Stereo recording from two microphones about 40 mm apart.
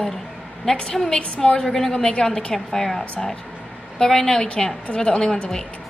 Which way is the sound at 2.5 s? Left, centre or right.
Centre.